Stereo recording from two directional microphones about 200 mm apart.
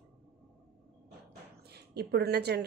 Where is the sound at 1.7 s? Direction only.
55° right (ahead or behind).